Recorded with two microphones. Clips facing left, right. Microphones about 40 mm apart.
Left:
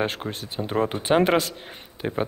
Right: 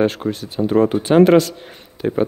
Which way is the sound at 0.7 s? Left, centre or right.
Centre.